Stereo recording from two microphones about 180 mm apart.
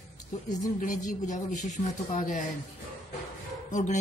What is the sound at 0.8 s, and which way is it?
Speech, 45° left (ahead or behind).